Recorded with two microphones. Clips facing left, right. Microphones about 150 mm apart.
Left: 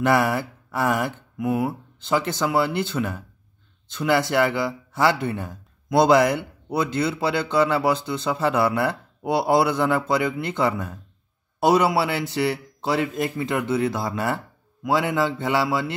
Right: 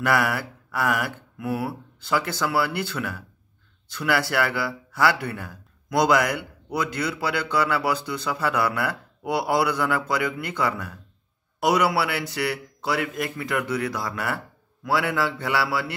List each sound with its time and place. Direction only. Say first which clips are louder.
0.0 s speech: left 3 dB; 25° left (ahead or behind)